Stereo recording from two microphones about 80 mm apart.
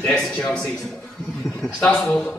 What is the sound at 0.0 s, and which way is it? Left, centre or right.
A man's voice, centre.